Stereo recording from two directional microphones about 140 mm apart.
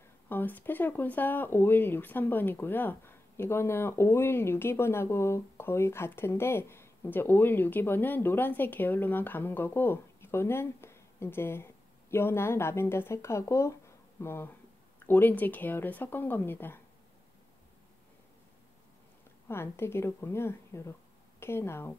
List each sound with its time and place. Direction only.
0.3 s speech: 15° left (ahead or behind)
19.4 s a woman's voice: 15° left (ahead or behind)